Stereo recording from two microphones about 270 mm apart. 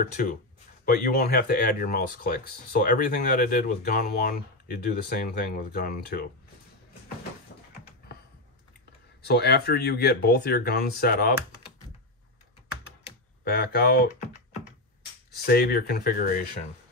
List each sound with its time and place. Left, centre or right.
0.8 s speech: left
9.2 s speech: left
13.4 s speech: left
15.3 s speech: left